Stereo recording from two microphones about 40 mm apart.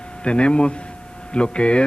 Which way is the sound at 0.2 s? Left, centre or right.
Left.